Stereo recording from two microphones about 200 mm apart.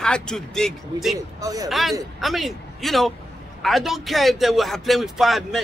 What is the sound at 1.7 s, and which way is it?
A man's voice, centre (ahead or behind).